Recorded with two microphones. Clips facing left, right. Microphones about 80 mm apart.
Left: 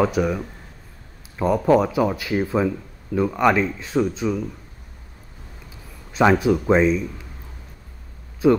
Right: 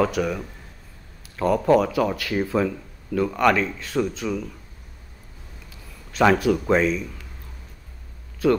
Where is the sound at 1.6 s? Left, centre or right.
Centre.